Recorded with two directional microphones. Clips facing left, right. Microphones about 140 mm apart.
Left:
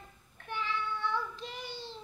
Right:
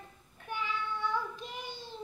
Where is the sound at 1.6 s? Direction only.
50° right (ahead or behind).